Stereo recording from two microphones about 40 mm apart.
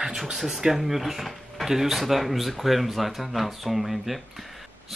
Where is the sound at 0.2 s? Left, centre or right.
Centre.